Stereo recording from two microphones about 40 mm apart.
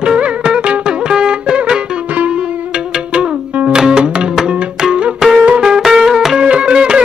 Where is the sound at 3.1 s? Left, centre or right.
Right.